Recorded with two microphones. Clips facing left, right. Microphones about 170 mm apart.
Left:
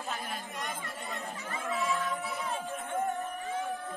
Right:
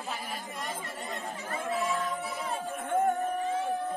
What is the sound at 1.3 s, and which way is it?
Chatter, 35° right (ahead or behind).